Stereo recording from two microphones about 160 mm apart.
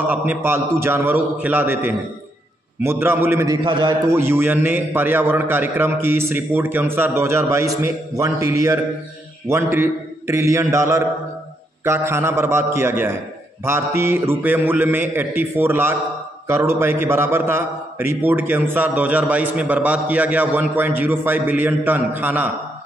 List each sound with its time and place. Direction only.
0.1 s a man's voice: 10° right (ahead or behind)
3.6 s a man's voice: 30° right (ahead or behind)
4.1 s a man's voice: 15° right (ahead or behind)